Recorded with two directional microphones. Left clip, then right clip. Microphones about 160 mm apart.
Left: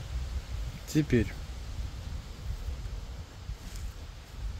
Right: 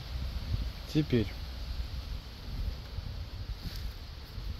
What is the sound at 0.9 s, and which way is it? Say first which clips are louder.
Speech: left 2 dB; 35° left (ahead or behind).